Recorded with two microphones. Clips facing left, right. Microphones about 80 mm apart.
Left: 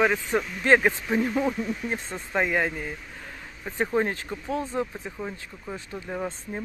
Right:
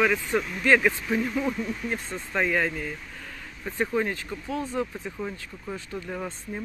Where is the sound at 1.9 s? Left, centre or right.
Centre.